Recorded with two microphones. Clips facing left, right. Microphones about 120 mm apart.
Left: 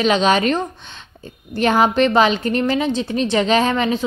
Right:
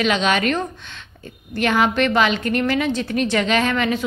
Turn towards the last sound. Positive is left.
turn(degrees=30)  # may be behind; listen again after turning